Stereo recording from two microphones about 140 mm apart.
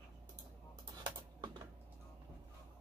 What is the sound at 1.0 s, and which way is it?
Typing, 30° right (ahead or behind).